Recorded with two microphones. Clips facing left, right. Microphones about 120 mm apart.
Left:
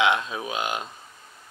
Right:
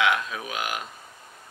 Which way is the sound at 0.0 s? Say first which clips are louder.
Left 2 dB; 25° left (ahead or behind).